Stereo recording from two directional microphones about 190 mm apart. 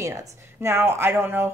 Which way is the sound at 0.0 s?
15° right (ahead or behind).